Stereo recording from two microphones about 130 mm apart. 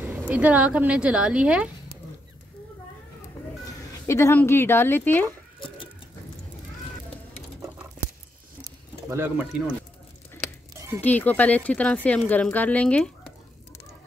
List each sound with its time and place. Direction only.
0.0 s speech: 5° right (ahead or behind)
4.1 s a woman's voice: 20° left (ahead or behind)
9.1 s speech: 20° right (ahead or behind)
11.0 s a woman's voice: 10° left (ahead or behind)